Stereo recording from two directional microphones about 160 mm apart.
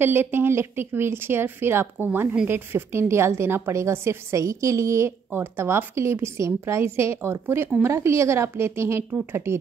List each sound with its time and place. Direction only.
0.0 s speech: 15° right (ahead or behind)